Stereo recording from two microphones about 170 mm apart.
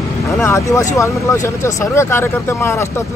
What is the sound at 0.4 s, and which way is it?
Speech, 15° left (ahead or behind).